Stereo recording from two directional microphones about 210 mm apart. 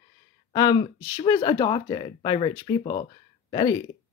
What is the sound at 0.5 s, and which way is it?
Speech, 20° left (ahead or behind).